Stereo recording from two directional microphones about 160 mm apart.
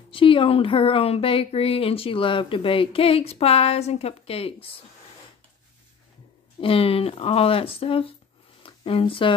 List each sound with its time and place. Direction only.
0.1 s speech: 35° left (ahead or behind)
6.6 s speech: 35° left (ahead or behind)